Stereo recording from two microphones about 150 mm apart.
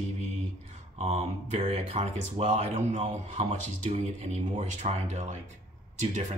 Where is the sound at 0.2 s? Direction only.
50° right (ahead or behind).